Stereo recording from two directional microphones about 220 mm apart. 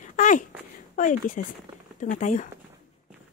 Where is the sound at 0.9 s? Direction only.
35° left (ahead or behind).